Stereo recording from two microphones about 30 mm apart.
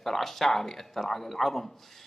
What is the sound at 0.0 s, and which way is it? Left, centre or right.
A man's voice, centre.